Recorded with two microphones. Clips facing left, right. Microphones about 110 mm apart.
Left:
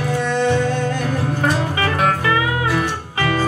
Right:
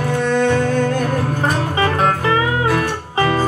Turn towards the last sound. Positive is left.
turn(degrees=-35)  # may be behind; listen again after turning